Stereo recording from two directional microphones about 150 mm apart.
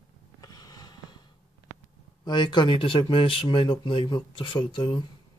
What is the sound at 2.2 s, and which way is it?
Speech, 30° left (ahead or behind).